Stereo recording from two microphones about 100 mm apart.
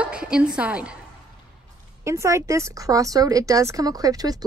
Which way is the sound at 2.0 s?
30° right (ahead or behind).